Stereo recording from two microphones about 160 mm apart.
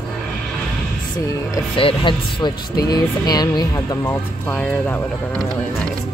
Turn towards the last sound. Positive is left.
turn(degrees=10)  # may be behind; listen again after turning